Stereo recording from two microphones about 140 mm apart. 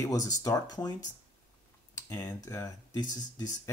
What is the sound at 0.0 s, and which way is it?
Speech, 25° left (ahead or behind).